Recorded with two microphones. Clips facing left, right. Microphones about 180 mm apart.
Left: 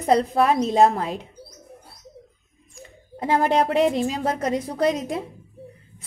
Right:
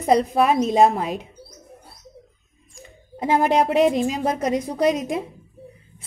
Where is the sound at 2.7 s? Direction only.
15° right (ahead or behind).